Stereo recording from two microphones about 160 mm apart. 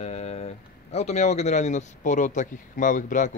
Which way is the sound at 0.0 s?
45° left (ahead or behind).